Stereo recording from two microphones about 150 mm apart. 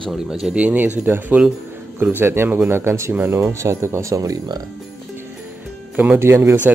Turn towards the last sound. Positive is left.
turn(degrees=-15)  # may be behind; listen again after turning